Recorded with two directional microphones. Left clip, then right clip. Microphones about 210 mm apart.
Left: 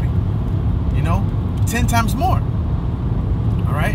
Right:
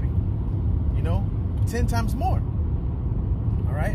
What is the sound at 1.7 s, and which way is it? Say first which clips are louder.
Speech: left 10 dB; 20° left (ahead or behind).